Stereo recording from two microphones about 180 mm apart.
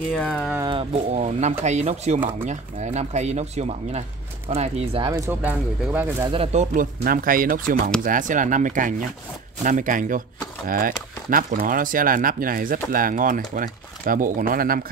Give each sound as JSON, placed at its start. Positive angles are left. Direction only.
{"t": 0.1, "sound": "speech", "side_deg": 5}
{"t": 1.1, "sound": "speech", "side_deg": -40}
{"t": 5.2, "sound": "speech", "side_deg": -10}
{"t": 6.2, "sound": "speech", "side_deg": -30}